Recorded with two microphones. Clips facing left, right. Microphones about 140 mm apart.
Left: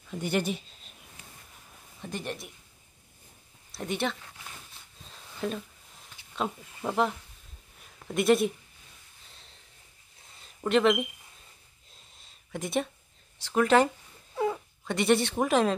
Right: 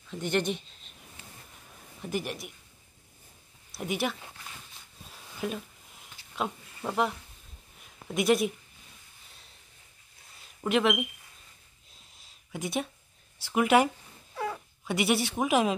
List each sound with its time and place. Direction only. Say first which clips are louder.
0.1 s speech: even; 10° left (ahead or behind)
2.0 s speech: right 3 dB; 5° right (ahead or behind)
3.7 s speech: even; 5° right (ahead or behind)
5.4 s speech: left 1 dB; 5° right (ahead or behind)
10.6 s speech: left 2 dB; 5° right (ahead or behind)
12.2 s a sound: even; centre (ahead or behind)
13.5 s speech: left 1 dB; 10° right (ahead or behind)
14.3 s a sound: left 5 dB; 20° left (ahead or behind)
14.9 s speech: left 3 dB; 5° right (ahead or behind)